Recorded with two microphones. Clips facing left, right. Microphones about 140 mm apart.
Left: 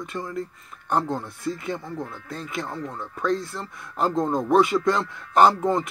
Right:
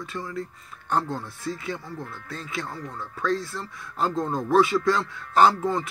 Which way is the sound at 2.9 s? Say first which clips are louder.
Left 1 dB; 20° left (ahead or behind).